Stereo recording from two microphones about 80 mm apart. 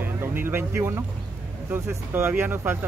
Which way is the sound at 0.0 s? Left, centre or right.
Right.